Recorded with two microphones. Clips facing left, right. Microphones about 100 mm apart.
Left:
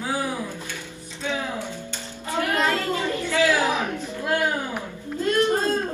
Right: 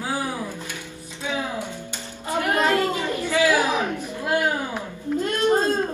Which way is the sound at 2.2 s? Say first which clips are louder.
Right 2 dB; 20° right (ahead or behind).